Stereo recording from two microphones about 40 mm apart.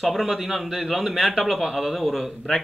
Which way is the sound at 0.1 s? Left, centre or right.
Centre.